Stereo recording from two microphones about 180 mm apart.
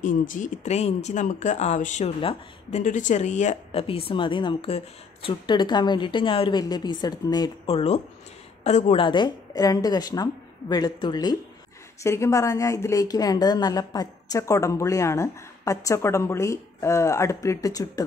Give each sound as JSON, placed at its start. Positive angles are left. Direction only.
{"t": 0.0, "sound": "speech", "side_deg": 45}
{"t": 2.8, "sound": "a woman's voice", "side_deg": 45}